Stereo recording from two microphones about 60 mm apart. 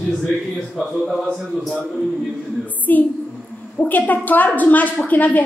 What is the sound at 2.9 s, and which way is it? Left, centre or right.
A woman's voice, left.